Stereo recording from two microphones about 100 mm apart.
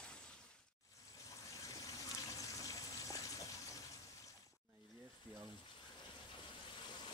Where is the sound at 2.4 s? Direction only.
35° left (ahead or behind).